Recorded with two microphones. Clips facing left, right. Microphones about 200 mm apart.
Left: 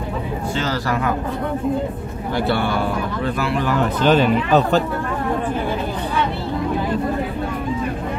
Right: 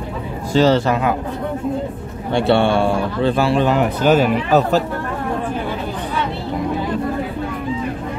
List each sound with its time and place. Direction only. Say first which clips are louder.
0.6 s speech: right 10 dB; 25° right (ahead or behind)
2.3 s speech: right 6 dB; 25° right (ahead or behind); by 4.8 s 5° right (ahead or behind)